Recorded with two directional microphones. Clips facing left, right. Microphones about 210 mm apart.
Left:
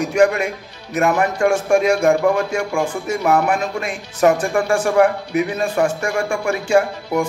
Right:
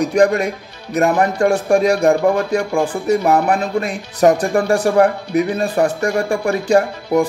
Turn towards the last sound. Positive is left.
turn(degrees=-35)  # may be behind; listen again after turning